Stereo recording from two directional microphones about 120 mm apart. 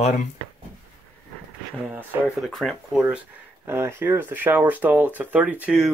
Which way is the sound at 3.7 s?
20° right (ahead or behind).